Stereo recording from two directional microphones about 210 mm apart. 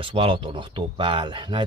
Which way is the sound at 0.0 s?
25° right (ahead or behind).